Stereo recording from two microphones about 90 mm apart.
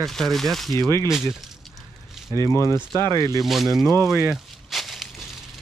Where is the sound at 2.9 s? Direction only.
50° right (ahead or behind).